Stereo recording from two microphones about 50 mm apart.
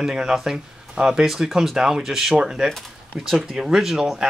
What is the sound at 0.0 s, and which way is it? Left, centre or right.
Speech, centre.